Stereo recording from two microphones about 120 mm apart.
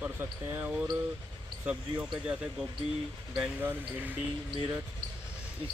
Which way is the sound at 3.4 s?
15° right (ahead or behind).